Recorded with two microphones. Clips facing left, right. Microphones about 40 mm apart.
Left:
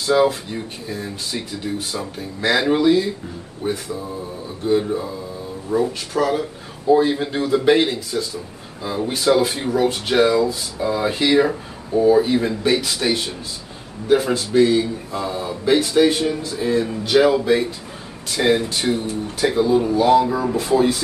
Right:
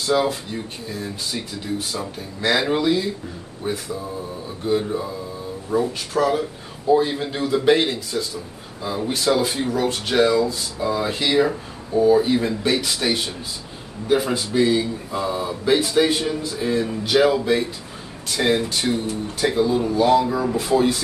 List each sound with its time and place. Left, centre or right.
0.0 s speech: centre